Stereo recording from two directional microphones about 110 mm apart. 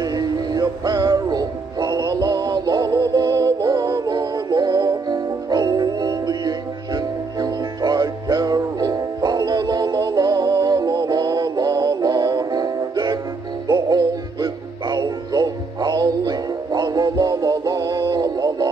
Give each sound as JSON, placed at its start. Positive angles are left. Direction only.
{"t": 0.0, "sound": "music", "side_deg": -40}